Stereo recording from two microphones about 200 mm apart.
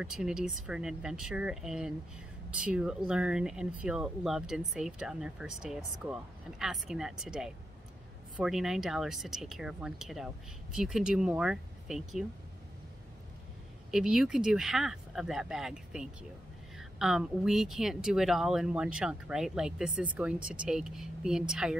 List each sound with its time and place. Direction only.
0.0 s speech: 5° right (ahead or behind)
13.9 s speech: 5° right (ahead or behind)